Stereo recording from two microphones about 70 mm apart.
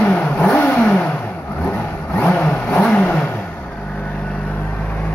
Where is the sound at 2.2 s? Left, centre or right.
Centre.